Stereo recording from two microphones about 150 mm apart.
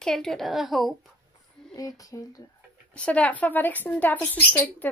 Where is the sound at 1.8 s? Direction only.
25° left (ahead or behind).